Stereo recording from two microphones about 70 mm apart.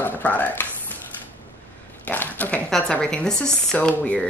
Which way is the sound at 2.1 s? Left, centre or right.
Left.